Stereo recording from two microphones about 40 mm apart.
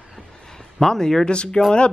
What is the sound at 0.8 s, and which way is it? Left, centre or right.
Speech, centre.